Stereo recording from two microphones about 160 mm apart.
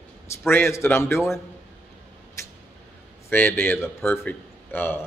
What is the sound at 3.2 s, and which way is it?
Speech, 15° left (ahead or behind).